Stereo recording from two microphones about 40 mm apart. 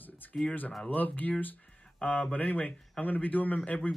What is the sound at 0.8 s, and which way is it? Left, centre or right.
Speech, left.